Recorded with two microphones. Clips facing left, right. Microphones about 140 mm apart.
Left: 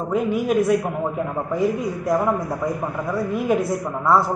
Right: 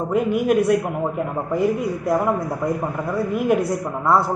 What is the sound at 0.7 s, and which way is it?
A man's voice, 5° right (ahead or behind).